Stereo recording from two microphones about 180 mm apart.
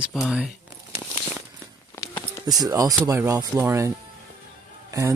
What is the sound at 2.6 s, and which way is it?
Speech, 20° right (ahead or behind).